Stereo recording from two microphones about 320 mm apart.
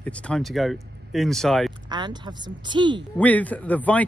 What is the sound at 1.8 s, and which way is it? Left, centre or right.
A woman's voice, centre.